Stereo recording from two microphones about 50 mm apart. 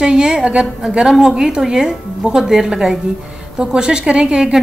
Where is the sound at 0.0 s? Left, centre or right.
Centre.